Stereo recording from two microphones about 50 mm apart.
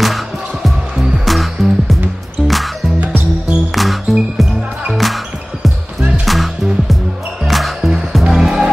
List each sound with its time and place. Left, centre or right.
0.0 s music: centre
3.7 s music: centre
5.9 s music: right
6.2 s music: centre